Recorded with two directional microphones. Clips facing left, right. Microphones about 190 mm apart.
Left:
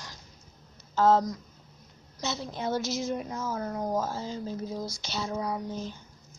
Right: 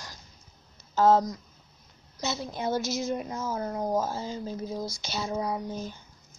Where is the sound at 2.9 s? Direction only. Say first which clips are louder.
Right 1 dB; 5° right (ahead or behind).